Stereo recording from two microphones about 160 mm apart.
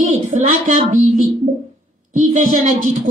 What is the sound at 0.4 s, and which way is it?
A child's voice, 50° right (ahead or behind).